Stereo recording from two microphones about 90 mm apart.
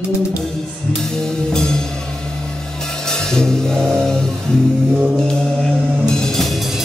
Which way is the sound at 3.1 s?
5° left (ahead or behind).